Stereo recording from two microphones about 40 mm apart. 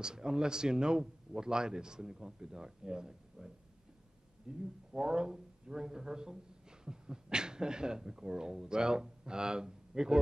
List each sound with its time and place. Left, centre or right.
0.0 s speech: centre